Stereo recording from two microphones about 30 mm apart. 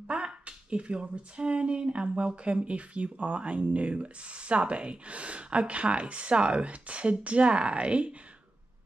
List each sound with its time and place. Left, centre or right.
0.1 s speech: right